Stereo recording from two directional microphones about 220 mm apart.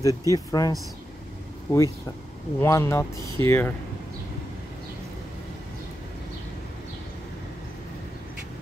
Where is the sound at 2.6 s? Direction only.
10° left (ahead or behind).